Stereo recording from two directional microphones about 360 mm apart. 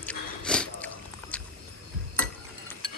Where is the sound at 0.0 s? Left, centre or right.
Centre.